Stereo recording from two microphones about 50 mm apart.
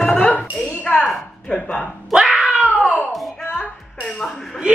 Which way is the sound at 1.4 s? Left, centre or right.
Centre.